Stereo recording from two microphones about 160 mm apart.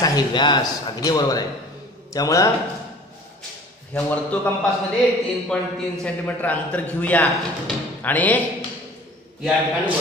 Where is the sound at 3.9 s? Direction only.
5° left (ahead or behind).